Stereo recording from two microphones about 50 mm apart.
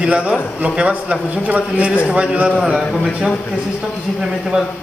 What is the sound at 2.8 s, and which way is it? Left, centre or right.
Speech, centre.